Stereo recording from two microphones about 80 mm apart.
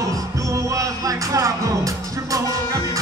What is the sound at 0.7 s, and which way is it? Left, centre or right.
Music, right.